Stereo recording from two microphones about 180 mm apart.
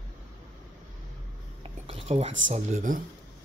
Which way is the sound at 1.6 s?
35° right (ahead or behind).